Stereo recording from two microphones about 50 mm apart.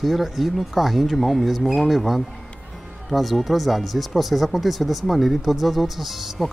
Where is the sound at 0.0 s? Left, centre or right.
Centre.